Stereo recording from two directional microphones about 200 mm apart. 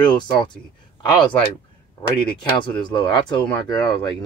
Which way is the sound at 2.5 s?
25° left (ahead or behind).